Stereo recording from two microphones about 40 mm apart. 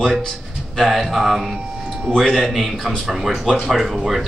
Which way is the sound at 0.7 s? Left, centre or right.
Centre.